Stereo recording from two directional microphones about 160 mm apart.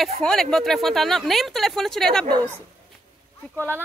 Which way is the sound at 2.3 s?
25° right (ahead or behind).